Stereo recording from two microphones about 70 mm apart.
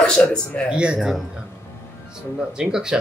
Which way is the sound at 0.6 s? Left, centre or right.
Centre.